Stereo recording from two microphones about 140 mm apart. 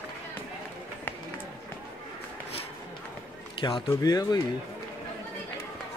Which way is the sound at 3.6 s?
35° left (ahead or behind).